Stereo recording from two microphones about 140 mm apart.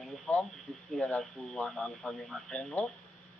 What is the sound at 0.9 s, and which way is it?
A man's voice, 5° left (ahead or behind).